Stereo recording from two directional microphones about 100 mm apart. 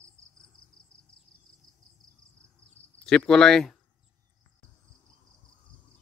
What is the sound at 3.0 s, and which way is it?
Cricket, 5° left (ahead or behind).